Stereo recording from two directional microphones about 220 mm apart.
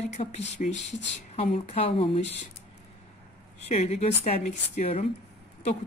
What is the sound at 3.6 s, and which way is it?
A woman's voice, 30° left (ahead or behind).